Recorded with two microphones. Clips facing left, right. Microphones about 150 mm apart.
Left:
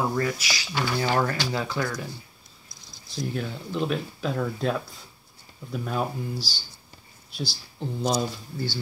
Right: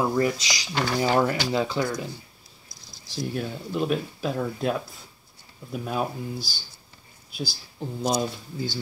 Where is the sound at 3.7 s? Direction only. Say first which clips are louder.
Right 2 dB; 15° right (ahead or behind).